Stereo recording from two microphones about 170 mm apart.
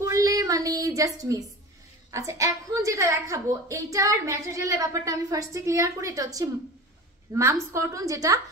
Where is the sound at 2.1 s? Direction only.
20° right (ahead or behind).